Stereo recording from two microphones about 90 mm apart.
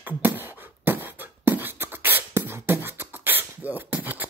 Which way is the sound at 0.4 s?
25° right (ahead or behind).